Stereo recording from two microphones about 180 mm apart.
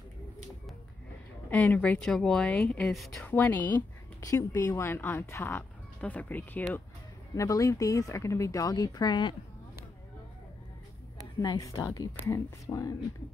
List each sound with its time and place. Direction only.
1.5 s speech: 5° left (ahead or behind)
4.2 s speech: 20° left (ahead or behind)
11.3 s speech: 20° left (ahead or behind)